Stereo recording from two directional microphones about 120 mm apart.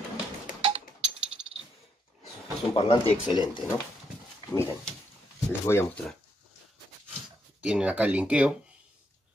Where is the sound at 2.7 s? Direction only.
55° left (ahead or behind).